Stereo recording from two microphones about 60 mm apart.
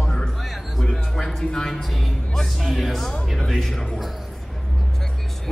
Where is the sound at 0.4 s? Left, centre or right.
Centre.